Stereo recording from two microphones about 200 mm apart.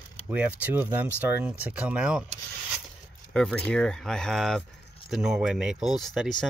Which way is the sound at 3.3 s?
5° left (ahead or behind).